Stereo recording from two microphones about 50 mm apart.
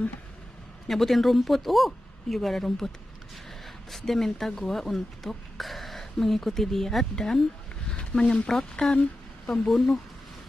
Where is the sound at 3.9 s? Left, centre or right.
Centre.